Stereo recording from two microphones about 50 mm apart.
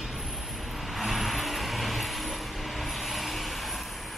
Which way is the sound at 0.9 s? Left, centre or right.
Centre.